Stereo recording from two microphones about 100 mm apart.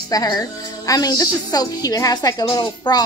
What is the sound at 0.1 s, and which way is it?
A woman's voice, 40° left (ahead or behind).